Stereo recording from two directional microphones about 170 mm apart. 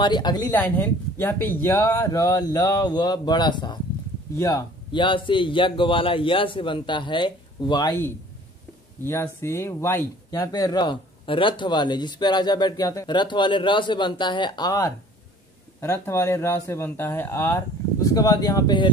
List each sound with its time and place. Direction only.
0.0 s speech: 25° left (ahead or behind)
0.5 s speech: 10° left (ahead or behind)
9.0 s speech: 15° left (ahead or behind)